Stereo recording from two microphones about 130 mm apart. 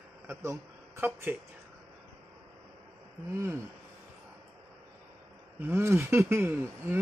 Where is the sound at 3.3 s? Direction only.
20° right (ahead or behind).